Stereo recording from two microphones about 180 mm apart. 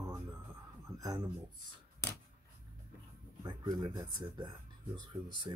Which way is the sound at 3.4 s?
25° right (ahead or behind).